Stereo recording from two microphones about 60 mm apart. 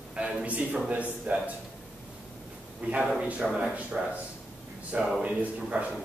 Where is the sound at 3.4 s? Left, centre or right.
Centre.